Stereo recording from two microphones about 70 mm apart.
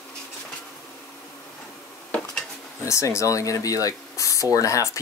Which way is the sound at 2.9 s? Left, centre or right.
Left.